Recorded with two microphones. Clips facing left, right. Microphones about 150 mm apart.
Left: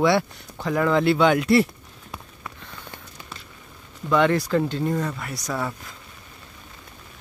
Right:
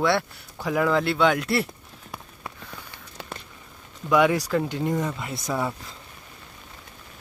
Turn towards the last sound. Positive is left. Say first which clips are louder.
# right 1 dB
turn(degrees=-25)  # may be behind; listen again after turning